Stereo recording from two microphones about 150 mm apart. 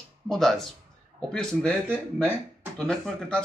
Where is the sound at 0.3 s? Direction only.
Centre (ahead or behind).